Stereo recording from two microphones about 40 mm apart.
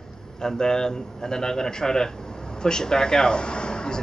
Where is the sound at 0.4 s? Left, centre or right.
Centre.